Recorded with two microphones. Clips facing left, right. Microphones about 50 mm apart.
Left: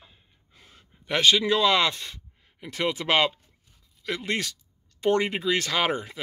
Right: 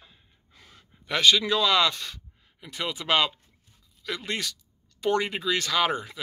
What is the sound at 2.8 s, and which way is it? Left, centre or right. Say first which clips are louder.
Speech: left 2 dB; left.